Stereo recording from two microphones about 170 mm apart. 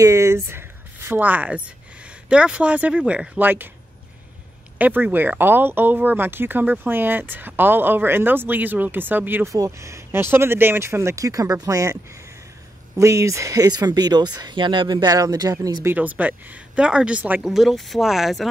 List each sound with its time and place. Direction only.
0.0 s speech: 15° right (ahead or behind)
4.7 s speech: 10° right (ahead or behind)